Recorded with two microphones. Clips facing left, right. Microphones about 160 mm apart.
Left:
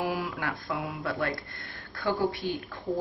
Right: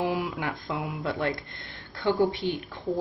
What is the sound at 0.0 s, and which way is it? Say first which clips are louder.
A woman's voice: right 3 dB; 20° right (ahead or behind).